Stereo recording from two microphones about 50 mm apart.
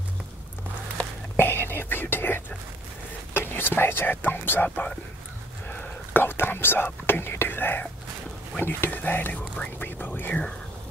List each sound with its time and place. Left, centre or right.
1.3 s whispering: left
3.3 s speech: left
4.6 s speech: left
5.7 s whispering: left
8.5 s speech: left